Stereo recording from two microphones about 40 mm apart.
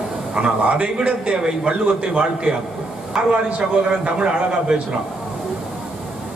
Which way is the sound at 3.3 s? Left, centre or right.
Right.